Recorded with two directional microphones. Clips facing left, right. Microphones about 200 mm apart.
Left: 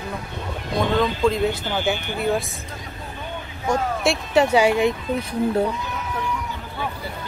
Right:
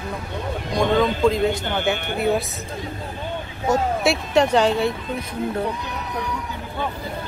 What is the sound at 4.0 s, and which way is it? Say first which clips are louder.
Speech: even; centre (ahead or behind).